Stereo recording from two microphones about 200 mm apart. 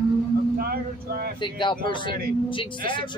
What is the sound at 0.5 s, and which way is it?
Speech, 50° right (ahead or behind).